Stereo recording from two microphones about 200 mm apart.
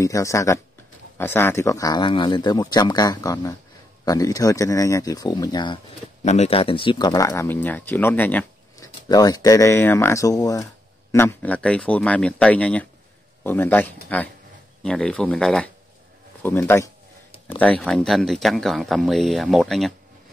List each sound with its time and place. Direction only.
0.0 s speech: 15° left (ahead or behind)
6.2 s speech: 35° left (ahead or behind); by 19.9 s centre (ahead or behind)